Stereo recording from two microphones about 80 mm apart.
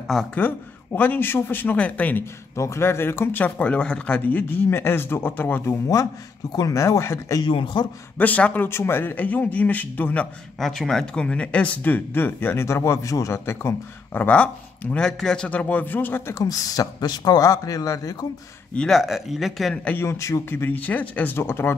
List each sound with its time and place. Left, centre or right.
0.1 s speech: centre
0.9 s speech: left
2.5 s speech: left
6.5 s speech: left
7.4 s speech: left
8.2 s speech: centre
8.6 s speech: left
10.6 s speech: centre; by 14.2 s left
14.2 s a man's voice: centre
16.3 s speech: left
18.8 s speech: centre
19.7 s a man's voice: centre
20.0 s speech: left